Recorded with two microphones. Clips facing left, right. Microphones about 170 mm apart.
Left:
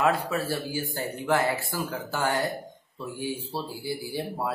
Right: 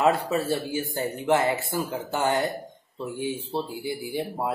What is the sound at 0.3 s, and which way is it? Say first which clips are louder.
Speech: right 3 dB; 25° right (ahead or behind).